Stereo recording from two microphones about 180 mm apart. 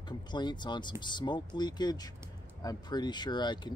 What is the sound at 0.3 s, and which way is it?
Speech, 25° left (ahead or behind).